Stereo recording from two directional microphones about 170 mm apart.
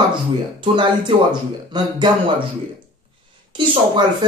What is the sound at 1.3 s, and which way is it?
Speech, 25° right (ahead or behind).